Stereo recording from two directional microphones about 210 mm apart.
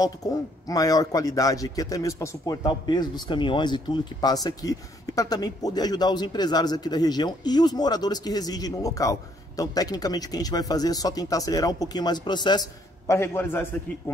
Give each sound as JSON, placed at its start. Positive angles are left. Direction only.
{"t": 0.0, "sound": "speech", "side_deg": 15}